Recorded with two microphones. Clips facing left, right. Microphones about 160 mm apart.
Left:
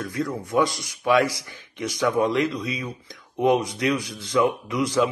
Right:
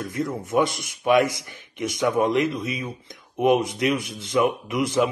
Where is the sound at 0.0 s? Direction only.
20° right (ahead or behind).